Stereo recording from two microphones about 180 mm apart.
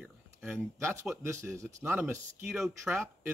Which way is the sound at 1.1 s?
15° right (ahead or behind).